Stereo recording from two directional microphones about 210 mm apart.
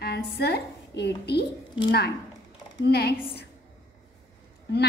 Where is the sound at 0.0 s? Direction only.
50° left (ahead or behind).